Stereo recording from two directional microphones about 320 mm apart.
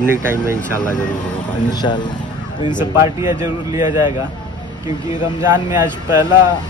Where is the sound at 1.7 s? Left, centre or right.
Centre.